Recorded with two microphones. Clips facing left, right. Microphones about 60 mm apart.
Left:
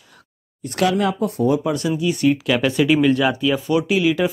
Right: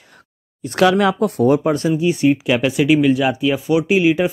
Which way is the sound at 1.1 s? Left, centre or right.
Right.